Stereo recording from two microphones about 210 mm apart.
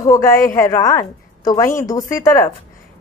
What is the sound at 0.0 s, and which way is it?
A woman's voice, 15° left (ahead or behind).